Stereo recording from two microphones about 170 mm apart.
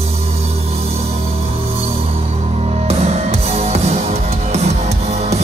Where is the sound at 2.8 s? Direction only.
35° right (ahead or behind).